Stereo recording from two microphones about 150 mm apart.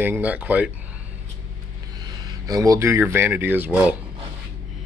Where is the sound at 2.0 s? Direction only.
25° right (ahead or behind).